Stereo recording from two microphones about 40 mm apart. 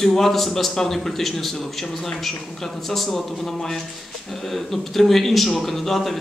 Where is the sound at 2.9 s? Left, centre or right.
Centre.